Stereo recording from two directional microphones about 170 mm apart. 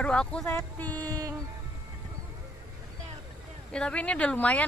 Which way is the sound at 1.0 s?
20° right (ahead or behind).